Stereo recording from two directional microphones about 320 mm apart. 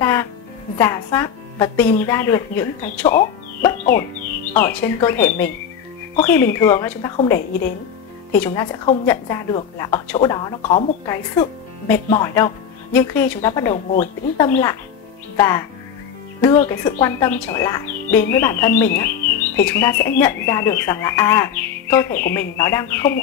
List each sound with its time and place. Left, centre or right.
0.0 s music: centre
0.7 s speech: centre
3.9 s speech: left
4.5 s speech: centre